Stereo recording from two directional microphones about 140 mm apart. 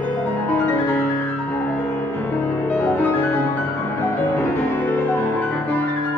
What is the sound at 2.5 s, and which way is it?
Music, 20° left (ahead or behind).